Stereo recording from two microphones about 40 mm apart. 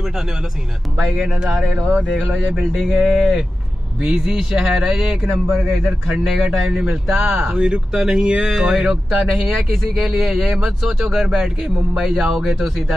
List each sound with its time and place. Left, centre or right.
0.9 s speech: centre
1.2 s speech: centre
6.2 s speech: centre; by 8.5 s right
8.5 s speech: right
8.8 s speech: centre